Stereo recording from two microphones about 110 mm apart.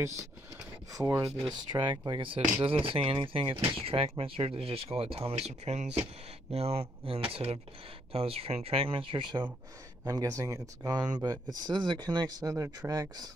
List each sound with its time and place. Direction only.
0.0 s speech: 25° right (ahead or behind)
1.7 s speech: 45° right (ahead or behind); by 6.0 s 85° right
6.5 s speech: 70° right (ahead or behind); by 9.5 s 45° right (ahead or behind)
10.0 s speech: 35° right (ahead or behind)
12.5 s speech: 25° right (ahead or behind)